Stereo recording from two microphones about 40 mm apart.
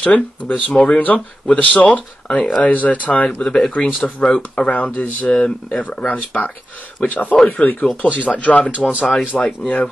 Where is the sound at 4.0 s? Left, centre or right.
Left.